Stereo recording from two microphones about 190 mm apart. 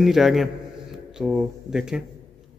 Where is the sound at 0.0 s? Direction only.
Centre (ahead or behind).